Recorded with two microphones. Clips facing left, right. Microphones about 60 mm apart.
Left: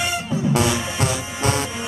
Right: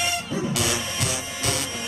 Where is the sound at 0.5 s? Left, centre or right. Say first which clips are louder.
Left 6 dB; left.